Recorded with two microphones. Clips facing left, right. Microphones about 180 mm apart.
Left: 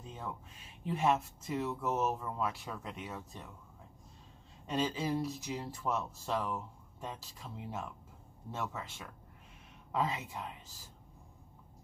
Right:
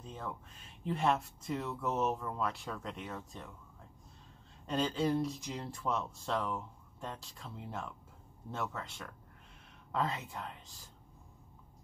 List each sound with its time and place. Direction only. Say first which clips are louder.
0.8 s speech: left 1 dB; 5° left (ahead or behind)
4.6 s speech: right 2 dB; 5° left (ahead or behind)